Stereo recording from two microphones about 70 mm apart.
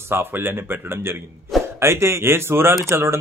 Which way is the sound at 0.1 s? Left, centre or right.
Right.